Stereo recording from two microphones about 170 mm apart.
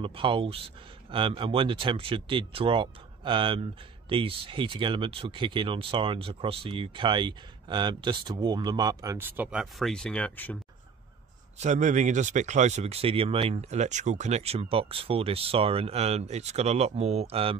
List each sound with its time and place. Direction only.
0.0 s speech: 30° right (ahead or behind); by 10.6 s 10° left (ahead or behind)
11.5 s speech: 45° right (ahead or behind)